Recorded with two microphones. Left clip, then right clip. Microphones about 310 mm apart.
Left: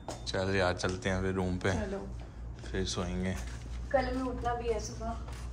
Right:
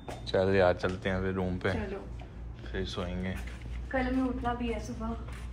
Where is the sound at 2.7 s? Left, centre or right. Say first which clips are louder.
Left 1 dB; left.